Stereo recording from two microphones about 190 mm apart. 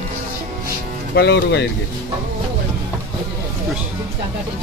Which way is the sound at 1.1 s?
60° left (ahead or behind).